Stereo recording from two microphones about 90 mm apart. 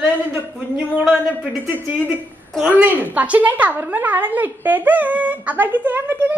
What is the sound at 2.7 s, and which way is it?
A woman's voice, 20° right (ahead or behind).